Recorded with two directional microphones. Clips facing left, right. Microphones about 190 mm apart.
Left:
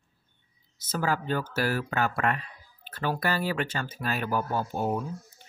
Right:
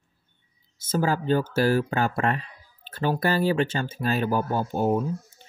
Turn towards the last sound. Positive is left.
turn(degrees=-25)  # may be behind; listen again after turning